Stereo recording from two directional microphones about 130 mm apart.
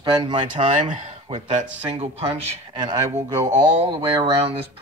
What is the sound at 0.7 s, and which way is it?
Speech, 75° right (ahead or behind).